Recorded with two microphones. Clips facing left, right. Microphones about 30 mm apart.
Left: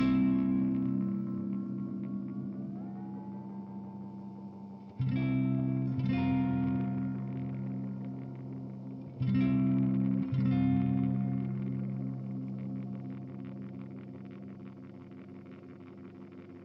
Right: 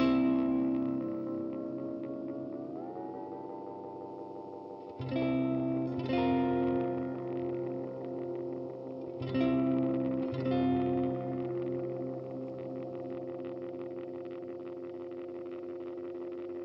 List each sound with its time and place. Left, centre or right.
0.0 s music: right; by 2.3 s centre
5.1 s music: right
5.4 s music: right
5.9 s music: right
9.2 s music: right
9.6 s music: right
10.2 s music: right
10.7 s music: right